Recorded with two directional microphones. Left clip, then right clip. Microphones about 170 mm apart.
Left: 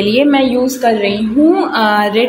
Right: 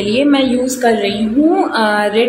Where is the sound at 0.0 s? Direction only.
35° left (ahead or behind).